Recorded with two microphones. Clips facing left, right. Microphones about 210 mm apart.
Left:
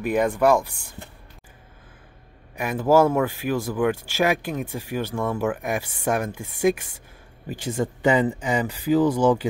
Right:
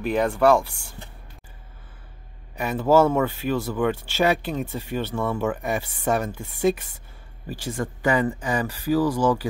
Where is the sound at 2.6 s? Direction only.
10° left (ahead or behind).